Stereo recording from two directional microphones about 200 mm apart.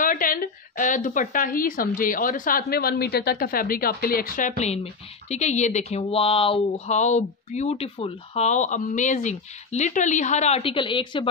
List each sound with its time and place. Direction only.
0.0 s speech: 45° left (ahead or behind); by 11.2 s 25° left (ahead or behind)